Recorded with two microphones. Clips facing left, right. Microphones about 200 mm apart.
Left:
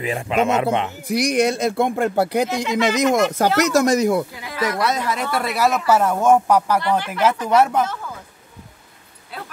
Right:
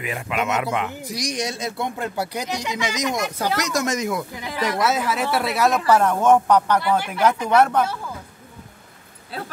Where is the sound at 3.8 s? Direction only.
40° left (ahead or behind).